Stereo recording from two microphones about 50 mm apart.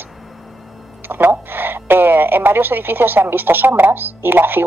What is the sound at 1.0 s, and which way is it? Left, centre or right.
Speech, right.